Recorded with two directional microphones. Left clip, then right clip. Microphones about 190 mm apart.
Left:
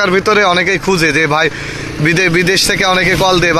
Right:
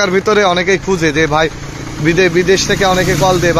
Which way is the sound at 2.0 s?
20° left (ahead or behind).